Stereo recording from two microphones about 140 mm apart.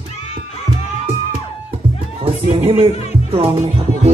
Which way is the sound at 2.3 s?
45° right (ahead or behind).